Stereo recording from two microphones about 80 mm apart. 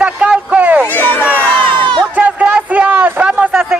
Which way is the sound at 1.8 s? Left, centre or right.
Right.